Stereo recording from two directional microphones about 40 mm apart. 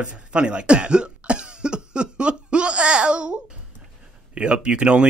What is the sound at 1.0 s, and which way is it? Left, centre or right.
Cough, right.